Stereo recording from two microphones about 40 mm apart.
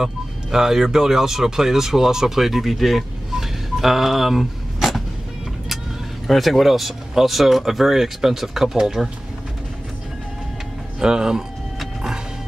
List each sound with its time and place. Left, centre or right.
0.0 s speech: centre
6.2 s speech: centre
11.0 s speech: centre